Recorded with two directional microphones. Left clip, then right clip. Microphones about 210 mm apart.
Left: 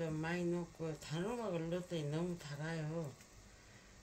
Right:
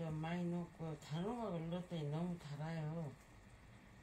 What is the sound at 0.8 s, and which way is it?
Speech, 50° left (ahead or behind).